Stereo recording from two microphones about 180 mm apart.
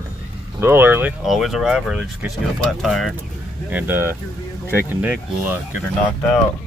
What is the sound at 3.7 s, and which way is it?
Speech, 10° right (ahead or behind).